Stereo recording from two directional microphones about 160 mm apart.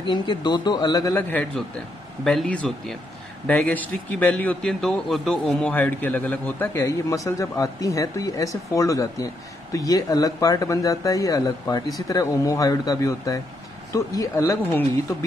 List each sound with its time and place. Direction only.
0.0 s a man's voice: 30° left (ahead or behind)
1.1 s a man's voice: 10° left (ahead or behind)